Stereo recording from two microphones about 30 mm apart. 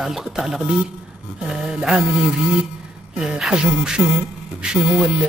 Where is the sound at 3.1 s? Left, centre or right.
Right.